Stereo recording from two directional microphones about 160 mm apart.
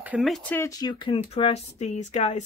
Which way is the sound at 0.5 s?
20° left (ahead or behind).